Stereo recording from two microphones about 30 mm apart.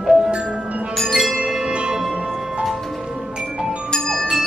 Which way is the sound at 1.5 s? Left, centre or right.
Right.